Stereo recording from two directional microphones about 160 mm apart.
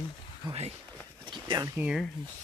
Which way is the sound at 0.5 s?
40° right (ahead or behind).